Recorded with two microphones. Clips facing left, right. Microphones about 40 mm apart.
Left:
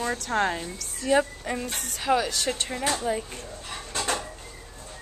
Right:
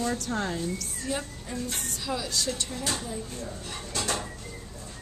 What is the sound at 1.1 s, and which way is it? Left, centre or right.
Speech, left.